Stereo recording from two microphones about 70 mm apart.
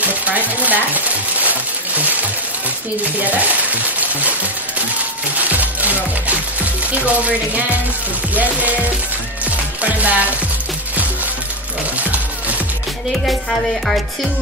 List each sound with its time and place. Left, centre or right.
0.0 s a sound: right
5.4 s music: right
13.2 s speech: centre